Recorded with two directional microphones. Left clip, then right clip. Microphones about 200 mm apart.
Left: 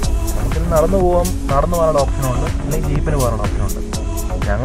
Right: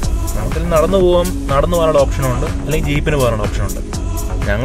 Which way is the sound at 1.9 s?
Centre (ahead or behind).